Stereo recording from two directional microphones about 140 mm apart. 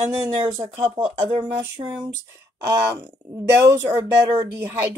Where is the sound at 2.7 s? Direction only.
15° right (ahead or behind).